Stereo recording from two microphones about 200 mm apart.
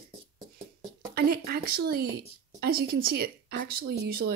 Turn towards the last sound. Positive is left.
turn(degrees=-50)  # may be behind; listen again after turning